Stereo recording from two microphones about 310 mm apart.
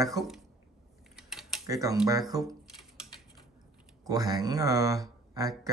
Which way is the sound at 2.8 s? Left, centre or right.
Centre.